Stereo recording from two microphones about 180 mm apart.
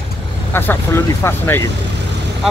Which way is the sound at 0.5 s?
10° left (ahead or behind).